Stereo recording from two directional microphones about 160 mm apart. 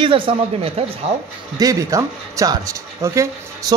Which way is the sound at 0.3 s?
35° right (ahead or behind).